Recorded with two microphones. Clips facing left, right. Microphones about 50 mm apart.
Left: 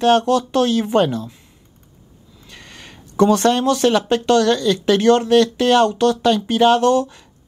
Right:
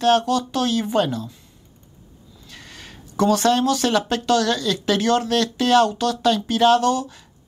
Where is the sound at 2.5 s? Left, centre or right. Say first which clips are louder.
Left 1 dB; centre.